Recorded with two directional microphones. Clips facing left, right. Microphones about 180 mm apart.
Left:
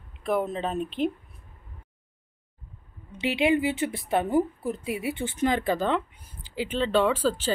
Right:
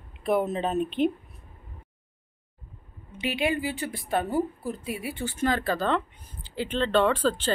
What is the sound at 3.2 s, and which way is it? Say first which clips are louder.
A woman's voice: left 4 dB; 20° left (ahead or behind).